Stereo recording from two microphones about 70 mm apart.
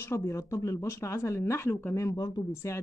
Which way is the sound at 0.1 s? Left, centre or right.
Left.